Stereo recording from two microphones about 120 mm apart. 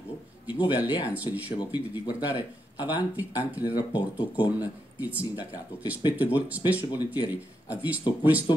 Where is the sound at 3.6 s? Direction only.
40° left (ahead or behind).